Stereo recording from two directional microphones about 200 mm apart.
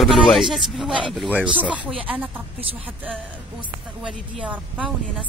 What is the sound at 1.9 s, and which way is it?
Speech, 25° right (ahead or behind).